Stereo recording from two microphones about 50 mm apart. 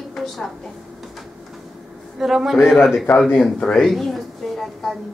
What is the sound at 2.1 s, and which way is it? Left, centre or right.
Speech, centre.